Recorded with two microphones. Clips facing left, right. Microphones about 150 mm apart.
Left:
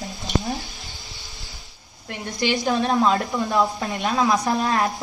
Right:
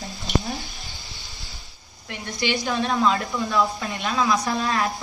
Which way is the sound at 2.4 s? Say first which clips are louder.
Left 3 dB; 45° left (ahead or behind).